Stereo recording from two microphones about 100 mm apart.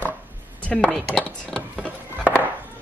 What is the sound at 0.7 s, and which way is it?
Speech, 15° left (ahead or behind).